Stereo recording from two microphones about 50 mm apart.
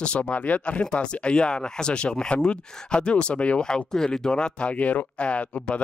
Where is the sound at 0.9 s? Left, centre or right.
Left.